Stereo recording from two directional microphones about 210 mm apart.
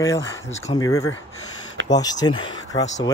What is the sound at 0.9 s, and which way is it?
Speech, 90° left.